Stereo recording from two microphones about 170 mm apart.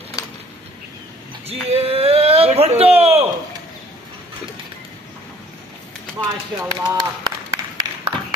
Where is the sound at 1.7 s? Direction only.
35° right (ahead or behind).